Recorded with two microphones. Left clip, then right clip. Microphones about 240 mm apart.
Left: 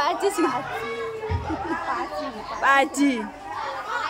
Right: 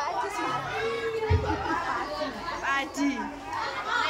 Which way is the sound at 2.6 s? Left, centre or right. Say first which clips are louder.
Left 10 dB; left.